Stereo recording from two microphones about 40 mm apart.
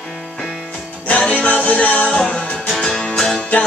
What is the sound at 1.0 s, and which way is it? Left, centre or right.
Music, left.